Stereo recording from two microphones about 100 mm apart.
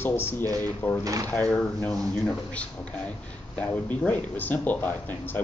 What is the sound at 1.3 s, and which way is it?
A man's voice, 15° left (ahead or behind).